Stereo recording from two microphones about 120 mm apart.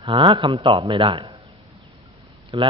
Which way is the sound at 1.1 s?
40° right (ahead or behind).